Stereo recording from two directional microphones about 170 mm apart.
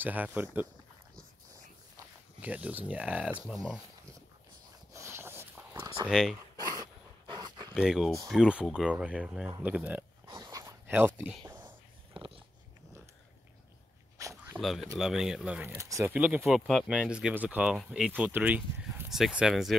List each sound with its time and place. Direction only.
0.0 s speech: 10° right (ahead or behind)
2.4 s speech: 10° right (ahead or behind)
4.9 s a sound: 15° right (ahead or behind)
6.0 s speech: 5° right (ahead or behind)
6.5 s dog: 20° right (ahead or behind)
7.7 s speech: 5° right (ahead or behind)
10.2 s a sound: 20° right (ahead or behind)
11.6 s whispering: 30° right (ahead or behind)
14.1 s a sound: 20° right (ahead or behind)
14.5 s speech: centre (ahead or behind)